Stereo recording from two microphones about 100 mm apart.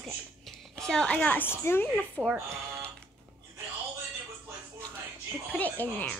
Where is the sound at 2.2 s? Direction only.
15° right (ahead or behind).